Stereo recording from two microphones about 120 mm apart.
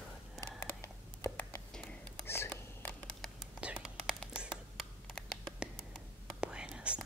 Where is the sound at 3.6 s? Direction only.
10° right (ahead or behind).